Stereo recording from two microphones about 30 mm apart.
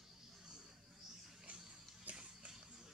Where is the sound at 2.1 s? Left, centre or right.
Right.